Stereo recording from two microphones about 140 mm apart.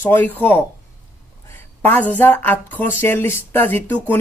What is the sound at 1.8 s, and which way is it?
Speech, 10° left (ahead or behind).